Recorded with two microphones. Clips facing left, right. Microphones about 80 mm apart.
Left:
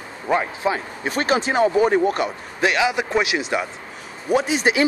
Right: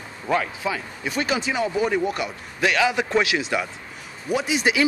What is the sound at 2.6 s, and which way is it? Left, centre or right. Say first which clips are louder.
A man's voice: left 1 dB; centre.